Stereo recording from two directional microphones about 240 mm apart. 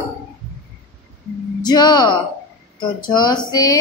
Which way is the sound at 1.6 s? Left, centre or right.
Centre.